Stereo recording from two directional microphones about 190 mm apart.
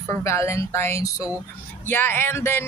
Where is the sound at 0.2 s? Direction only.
15° left (ahead or behind).